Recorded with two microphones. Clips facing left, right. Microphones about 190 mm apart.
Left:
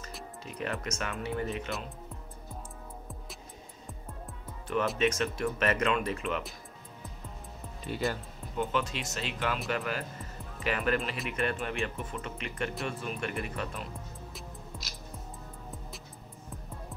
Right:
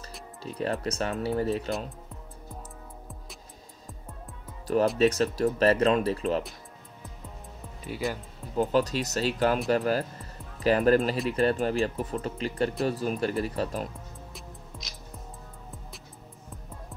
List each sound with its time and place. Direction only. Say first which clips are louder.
0.4 s speech: right 6 dB; 35° right (ahead or behind)
4.9 s speech: right 6 dB; 35° right (ahead or behind)
7.8 s speech: right 1 dB; 5° right (ahead or behind)
8.5 s speech: right 7 dB; 40° right (ahead or behind)
14.3 s music: even; centre (ahead or behind)